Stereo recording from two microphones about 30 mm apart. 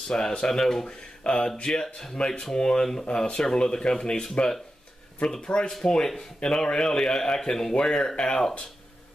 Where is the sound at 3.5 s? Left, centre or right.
Left.